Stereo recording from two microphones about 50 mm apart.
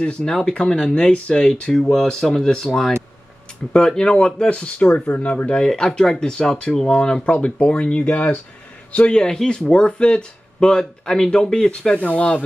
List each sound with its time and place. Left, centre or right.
0.0 s speech: centre
12.0 s speech: left